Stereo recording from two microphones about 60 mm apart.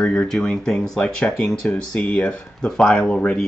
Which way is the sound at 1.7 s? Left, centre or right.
Left.